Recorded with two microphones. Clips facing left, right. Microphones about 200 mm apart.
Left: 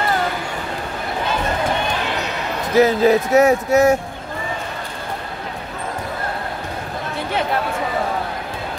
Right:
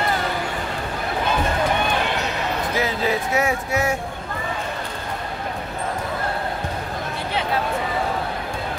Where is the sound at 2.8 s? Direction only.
40° left (ahead or behind).